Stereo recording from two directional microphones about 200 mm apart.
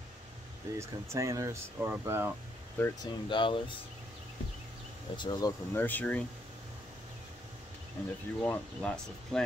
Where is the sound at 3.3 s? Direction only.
25° left (ahead or behind).